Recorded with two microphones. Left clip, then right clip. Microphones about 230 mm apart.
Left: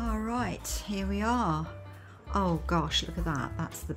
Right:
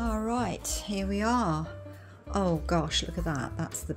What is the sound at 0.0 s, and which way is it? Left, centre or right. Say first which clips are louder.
Speech: right 2 dB; centre.